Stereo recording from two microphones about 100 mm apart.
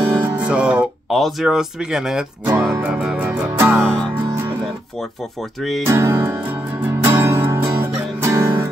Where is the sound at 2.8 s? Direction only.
15° right (ahead or behind).